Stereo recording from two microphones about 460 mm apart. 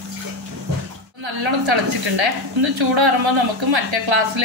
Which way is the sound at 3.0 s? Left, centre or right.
Right.